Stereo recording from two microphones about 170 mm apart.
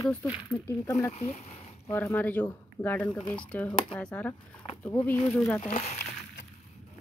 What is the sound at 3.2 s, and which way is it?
Speech, 30° left (ahead or behind).